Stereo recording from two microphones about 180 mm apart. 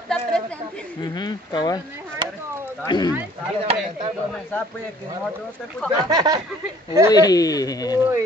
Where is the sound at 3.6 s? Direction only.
30° right (ahead or behind).